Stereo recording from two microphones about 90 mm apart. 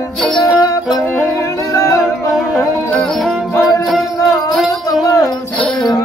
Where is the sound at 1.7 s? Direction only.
40° left (ahead or behind).